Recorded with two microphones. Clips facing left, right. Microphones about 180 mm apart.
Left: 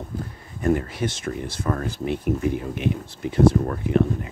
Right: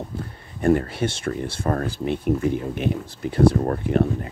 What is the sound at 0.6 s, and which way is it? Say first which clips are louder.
Speech: right 3 dB; 35° right (ahead or behind).